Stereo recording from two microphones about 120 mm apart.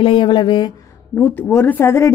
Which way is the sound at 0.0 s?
40° left (ahead or behind).